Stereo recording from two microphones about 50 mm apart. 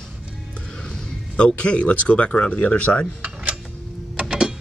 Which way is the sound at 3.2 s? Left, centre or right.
Right.